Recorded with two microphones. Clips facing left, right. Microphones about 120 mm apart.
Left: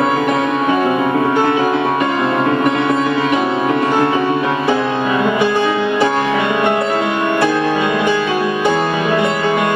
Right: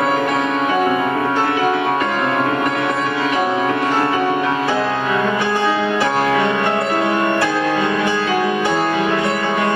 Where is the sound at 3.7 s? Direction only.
15° left (ahead or behind).